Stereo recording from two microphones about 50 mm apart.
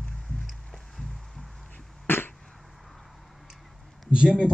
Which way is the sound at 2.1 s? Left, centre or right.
Left.